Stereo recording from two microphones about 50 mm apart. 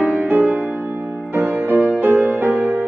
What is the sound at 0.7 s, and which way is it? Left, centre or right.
Music, right.